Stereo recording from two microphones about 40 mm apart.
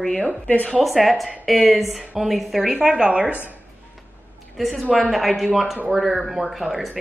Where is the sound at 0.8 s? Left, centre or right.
Centre.